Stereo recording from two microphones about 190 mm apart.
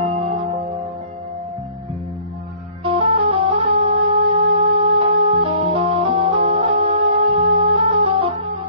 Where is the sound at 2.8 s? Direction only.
30° right (ahead or behind).